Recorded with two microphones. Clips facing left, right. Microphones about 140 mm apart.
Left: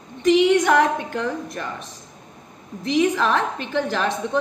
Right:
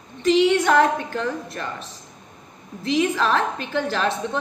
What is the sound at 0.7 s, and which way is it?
A woman's voice, 15° left (ahead or behind).